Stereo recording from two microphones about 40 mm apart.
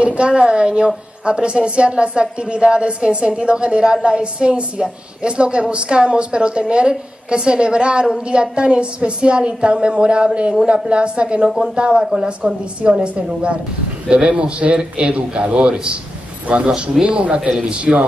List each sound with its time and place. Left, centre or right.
0.0 s a woman's voice: right
12.0 s a woman's voice: centre
12.4 s a woman's voice: right